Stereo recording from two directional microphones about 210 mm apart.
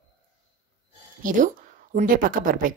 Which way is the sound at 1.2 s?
40° right (ahead or behind).